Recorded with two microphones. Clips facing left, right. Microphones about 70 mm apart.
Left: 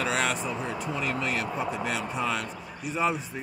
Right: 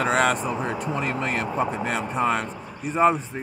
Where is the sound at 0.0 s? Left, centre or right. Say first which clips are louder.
Right 6 dB; right.